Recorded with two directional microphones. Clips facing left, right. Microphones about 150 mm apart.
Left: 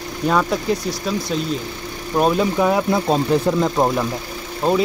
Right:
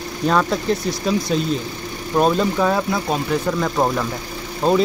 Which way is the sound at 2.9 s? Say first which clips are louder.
Left 4 dB; 25° left (ahead or behind).